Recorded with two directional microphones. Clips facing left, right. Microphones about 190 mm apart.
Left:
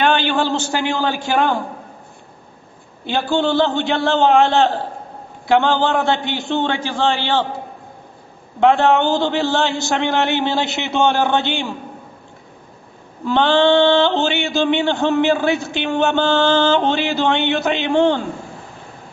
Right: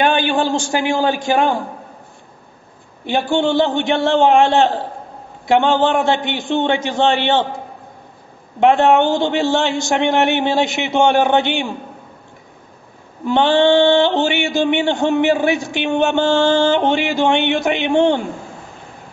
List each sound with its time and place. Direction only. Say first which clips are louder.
0.0 s speech: right 1 dB; 15° right (ahead or behind)
3.1 s a man's voice: right 1 dB; 15° right (ahead or behind)
8.5 s speech: right 2 dB; 20° right (ahead or behind)
13.2 s speech: right 1 dB; 15° right (ahead or behind)